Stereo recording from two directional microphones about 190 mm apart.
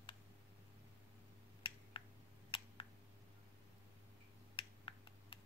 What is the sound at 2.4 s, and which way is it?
Finger snapping, 25° left (ahead or behind).